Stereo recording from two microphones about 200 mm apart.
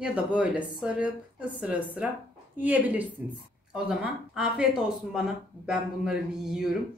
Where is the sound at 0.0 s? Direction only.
5° right (ahead or behind).